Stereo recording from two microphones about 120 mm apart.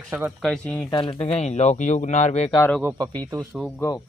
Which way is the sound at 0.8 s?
40° left (ahead or behind).